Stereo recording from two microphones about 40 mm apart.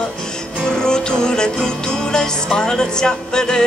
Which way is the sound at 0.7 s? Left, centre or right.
Centre.